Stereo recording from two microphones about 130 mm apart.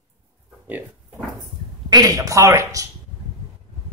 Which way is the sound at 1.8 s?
30° right (ahead or behind).